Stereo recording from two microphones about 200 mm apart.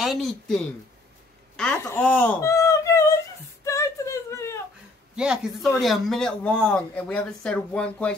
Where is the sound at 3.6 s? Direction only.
15° left (ahead or behind).